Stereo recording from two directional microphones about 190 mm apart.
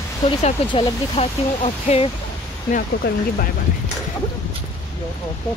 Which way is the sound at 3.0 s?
60° left (ahead or behind).